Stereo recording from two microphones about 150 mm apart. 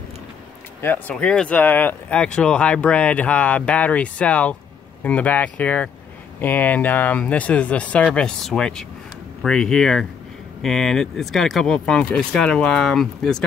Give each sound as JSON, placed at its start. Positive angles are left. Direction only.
{"t": 0.7, "sound": "speech", "side_deg": 15}